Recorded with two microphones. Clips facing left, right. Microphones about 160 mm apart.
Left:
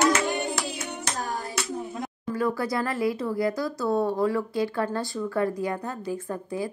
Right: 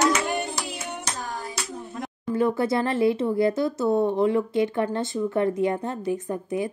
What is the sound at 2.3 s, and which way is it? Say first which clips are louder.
Speech: right 4 dB; 25° right (ahead or behind).